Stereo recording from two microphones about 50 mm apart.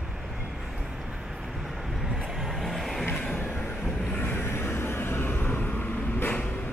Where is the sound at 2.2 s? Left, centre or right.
Centre.